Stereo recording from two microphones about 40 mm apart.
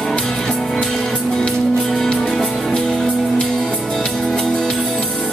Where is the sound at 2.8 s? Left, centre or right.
Centre.